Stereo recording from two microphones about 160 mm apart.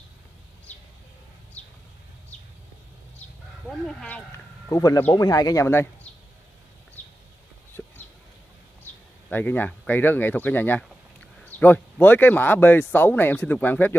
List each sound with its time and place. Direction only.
3.8 s speech: 5° left (ahead or behind)
4.6 s speech: 20° left (ahead or behind)
7.0 s a sound: 10° left (ahead or behind)
9.3 s speech: 10° left (ahead or behind)